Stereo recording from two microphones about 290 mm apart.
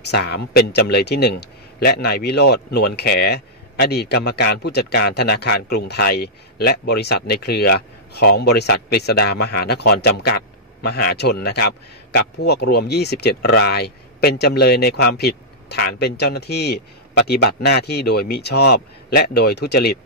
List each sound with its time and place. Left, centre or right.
0.1 s a man's voice: left